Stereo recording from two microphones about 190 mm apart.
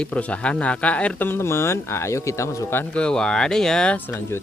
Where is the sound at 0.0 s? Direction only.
5° left (ahead or behind).